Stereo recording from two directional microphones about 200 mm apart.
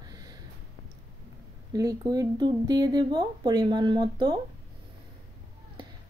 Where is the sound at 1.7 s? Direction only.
20° right (ahead or behind).